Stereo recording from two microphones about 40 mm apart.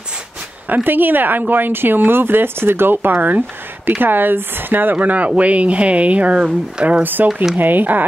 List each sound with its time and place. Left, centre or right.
0.8 s speech: right
4.0 s speech: right
4.9 s speech: right
7.0 s speech: right